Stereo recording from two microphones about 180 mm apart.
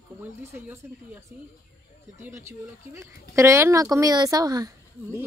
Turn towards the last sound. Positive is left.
turn(degrees=-20)  # may be behind; listen again after turning